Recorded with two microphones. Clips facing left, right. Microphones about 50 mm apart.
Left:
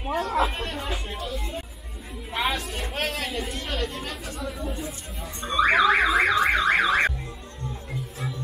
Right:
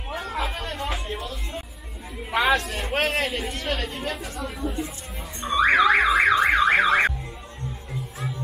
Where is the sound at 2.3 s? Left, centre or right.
Right.